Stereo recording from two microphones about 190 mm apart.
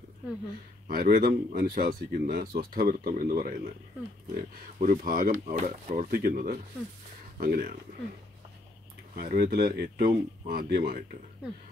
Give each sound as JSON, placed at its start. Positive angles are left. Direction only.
{"t": 0.8, "sound": "speech", "side_deg": -50}
{"t": 9.1, "sound": "speech", "side_deg": -50}